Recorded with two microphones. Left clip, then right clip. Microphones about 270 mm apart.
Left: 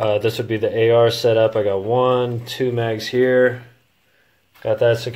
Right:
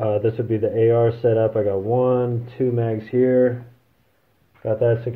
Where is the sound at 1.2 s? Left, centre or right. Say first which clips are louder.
Left 3 dB; left.